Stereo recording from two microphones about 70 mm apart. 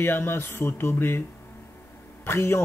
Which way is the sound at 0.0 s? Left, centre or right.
Left.